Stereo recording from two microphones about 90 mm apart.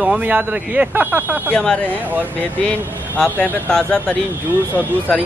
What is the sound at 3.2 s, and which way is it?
Speech, 10° left (ahead or behind).